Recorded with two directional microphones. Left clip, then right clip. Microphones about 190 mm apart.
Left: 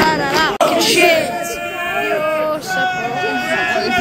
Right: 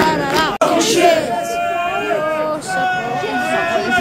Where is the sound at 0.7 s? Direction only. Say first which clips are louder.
Right 1 dB; 35° right (ahead or behind).